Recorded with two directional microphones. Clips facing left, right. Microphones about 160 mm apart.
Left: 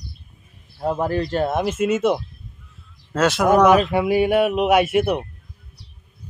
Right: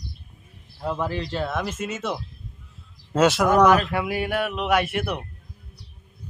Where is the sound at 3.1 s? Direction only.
15° right (ahead or behind).